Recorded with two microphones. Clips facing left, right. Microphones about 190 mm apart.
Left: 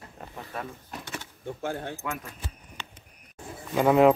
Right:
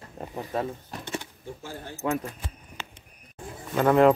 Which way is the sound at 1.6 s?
65° left (ahead or behind).